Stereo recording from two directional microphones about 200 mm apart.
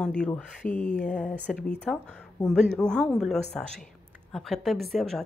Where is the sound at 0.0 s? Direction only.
5° left (ahead or behind).